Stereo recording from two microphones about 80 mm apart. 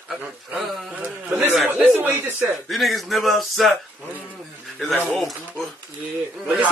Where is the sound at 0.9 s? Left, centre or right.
Centre.